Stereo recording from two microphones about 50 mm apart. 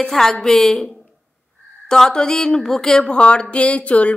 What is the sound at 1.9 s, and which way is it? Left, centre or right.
A woman's voice, centre.